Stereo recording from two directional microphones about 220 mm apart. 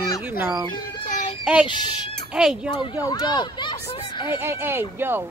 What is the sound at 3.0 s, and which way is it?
Speech, 20° left (ahead or behind).